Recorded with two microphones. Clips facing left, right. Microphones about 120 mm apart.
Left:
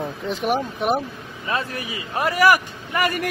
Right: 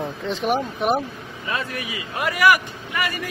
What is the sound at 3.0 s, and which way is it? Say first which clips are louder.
Speech: left 5 dB; 55° left (ahead or behind).